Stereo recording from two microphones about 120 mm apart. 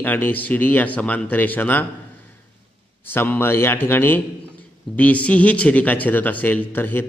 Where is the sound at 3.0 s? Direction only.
15° left (ahead or behind).